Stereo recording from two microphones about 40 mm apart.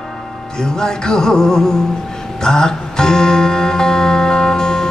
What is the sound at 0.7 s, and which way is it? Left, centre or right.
Music, centre.